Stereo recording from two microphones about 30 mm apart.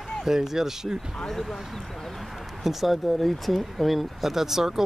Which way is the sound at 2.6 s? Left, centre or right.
Centre.